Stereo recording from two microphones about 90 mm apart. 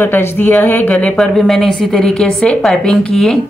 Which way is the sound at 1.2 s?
Centre (ahead or behind).